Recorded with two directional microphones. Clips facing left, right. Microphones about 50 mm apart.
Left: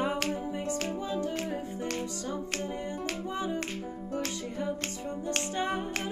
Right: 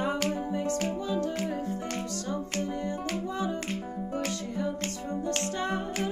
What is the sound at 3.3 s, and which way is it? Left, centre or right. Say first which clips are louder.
Music: left 1 dB; centre.